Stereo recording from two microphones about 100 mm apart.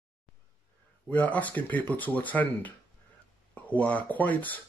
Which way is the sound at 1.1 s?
15° left (ahead or behind).